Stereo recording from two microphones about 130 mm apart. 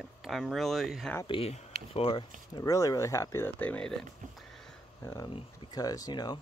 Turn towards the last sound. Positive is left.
turn(degrees=35)  # may be behind; listen again after turning